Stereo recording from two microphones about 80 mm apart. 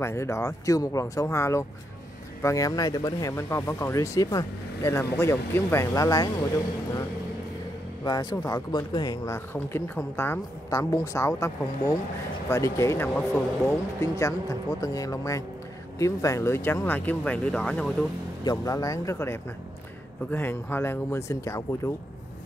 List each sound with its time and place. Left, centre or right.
0.0 s speech: left
3.3 s speech: left
4.8 s speech: left
5.9 s speech: left
8.0 s speech: left
9.2 s speech: left
10.7 s speech: left; by 18.0 s centre
18.4 s speech: left